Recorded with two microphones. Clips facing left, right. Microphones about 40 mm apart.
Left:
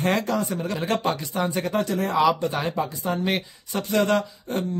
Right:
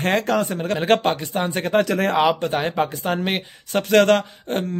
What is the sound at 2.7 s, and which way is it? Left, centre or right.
Speech, right.